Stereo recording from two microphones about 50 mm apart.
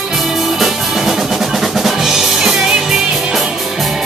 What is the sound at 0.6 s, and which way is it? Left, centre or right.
Drum, centre.